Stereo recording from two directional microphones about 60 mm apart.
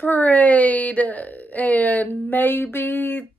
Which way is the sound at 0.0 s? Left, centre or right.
Left.